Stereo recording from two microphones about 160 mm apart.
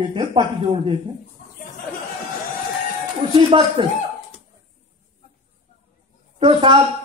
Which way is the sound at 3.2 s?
35° right (ahead or behind).